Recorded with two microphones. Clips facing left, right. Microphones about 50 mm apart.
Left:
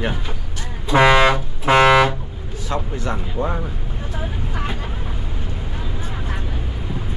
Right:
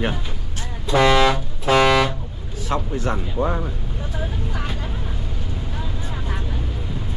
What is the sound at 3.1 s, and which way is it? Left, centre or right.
Speech, centre.